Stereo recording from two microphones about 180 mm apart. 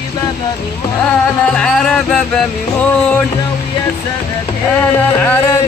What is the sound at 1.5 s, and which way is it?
Speech, 5° left (ahead or behind).